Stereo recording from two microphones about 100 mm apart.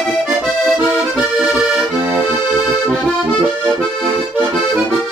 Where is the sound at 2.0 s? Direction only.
20° right (ahead or behind).